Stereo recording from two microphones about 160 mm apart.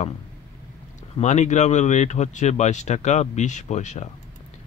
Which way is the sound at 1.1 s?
45° left (ahead or behind).